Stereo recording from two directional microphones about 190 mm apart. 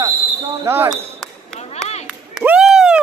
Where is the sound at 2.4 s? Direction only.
5° right (ahead or behind).